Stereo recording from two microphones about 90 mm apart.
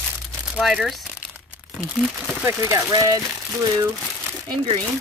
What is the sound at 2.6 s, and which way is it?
Speech, 35° right (ahead or behind).